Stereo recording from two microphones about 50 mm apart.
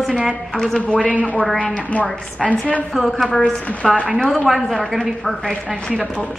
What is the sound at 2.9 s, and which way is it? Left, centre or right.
A woman's voice, centre.